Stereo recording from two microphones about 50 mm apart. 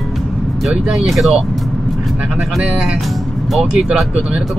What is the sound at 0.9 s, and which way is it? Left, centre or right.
Speech, centre.